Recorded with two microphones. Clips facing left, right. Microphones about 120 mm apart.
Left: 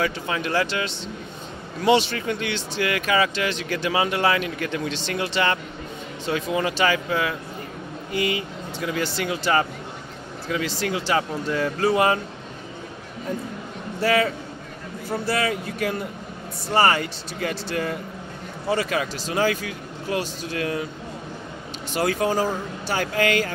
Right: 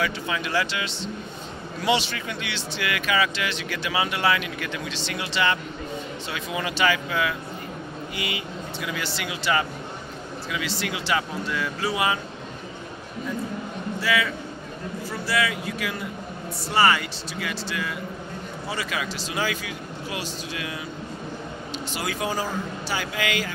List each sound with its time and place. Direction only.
0.0 s speech: 40° left (ahead or behind)
14.0 s speech: 45° left (ahead or behind)
21.9 s speech: 45° left (ahead or behind)